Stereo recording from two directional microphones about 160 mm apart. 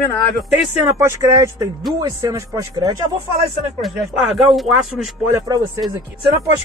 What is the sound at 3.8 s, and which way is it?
Speech, centre (ahead or behind).